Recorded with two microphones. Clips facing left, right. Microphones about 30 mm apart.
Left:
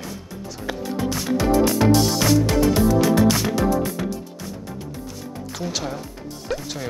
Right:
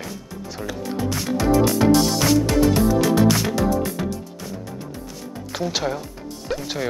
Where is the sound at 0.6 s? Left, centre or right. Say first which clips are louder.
Left 1 dB; right.